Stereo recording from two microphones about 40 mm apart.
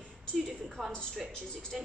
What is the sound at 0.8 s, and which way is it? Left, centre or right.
A woman's voice, centre.